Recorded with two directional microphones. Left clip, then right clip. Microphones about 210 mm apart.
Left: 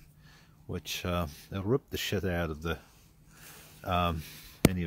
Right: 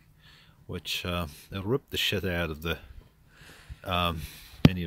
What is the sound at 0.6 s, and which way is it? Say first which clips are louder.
Speech: right 3 dB; centre (ahead or behind).